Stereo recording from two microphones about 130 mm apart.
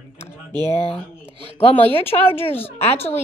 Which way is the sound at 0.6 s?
55° left (ahead or behind).